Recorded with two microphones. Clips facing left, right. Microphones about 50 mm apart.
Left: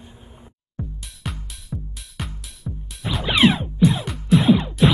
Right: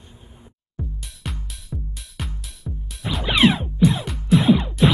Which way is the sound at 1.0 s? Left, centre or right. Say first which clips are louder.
Left 1 dB; centre.